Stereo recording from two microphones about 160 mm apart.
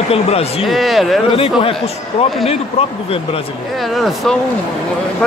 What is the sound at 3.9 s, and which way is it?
Speech, centre (ahead or behind).